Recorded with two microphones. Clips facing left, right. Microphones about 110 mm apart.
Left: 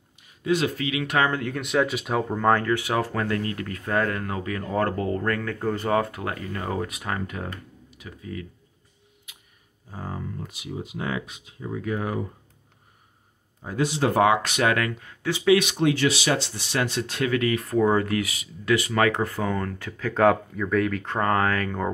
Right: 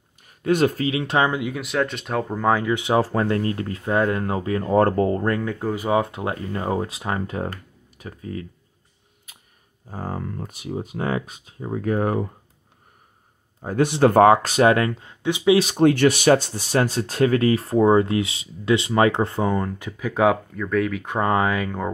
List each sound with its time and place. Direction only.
0.2 s speech: 50° right (ahead or behind); by 1.3 s 25° right (ahead or behind)
1.3 s speech: 10° right (ahead or behind)
1.6 s speech: centre (ahead or behind)
2.7 s speech: 25° right (ahead or behind)
9.3 s a sound: 40° right (ahead or behind)
9.8 s speech: 45° right (ahead or behind)
13.6 s speech: 50° right (ahead or behind); by 15.6 s 20° right (ahead or behind)
15.6 s speech: 45° right (ahead or behind); by 20.3 s 10° right (ahead or behind)
20.5 s speech: centre (ahead or behind)
21.0 s speech: 15° right (ahead or behind)